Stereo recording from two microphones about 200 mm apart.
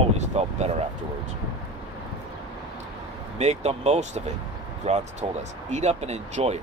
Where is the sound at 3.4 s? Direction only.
35° right (ahead or behind).